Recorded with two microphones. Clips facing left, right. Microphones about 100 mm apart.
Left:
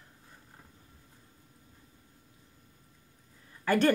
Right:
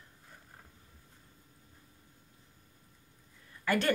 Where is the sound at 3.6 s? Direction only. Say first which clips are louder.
Left 5 dB; 35° left (ahead or behind).